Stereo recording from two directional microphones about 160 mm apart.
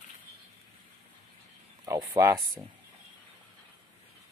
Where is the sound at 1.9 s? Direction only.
20° right (ahead or behind).